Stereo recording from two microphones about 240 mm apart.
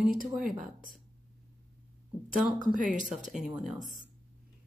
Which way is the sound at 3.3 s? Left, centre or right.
Centre.